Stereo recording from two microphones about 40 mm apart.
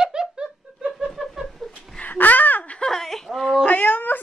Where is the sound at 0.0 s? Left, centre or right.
Centre.